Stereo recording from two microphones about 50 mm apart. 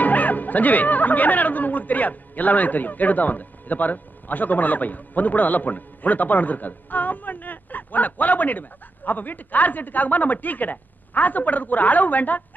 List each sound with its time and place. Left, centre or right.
0.0 s speech: left